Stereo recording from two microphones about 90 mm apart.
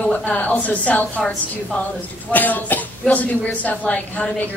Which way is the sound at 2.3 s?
20° left (ahead or behind).